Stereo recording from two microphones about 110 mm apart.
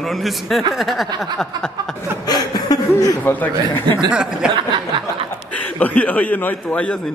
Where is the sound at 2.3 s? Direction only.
35° left (ahead or behind).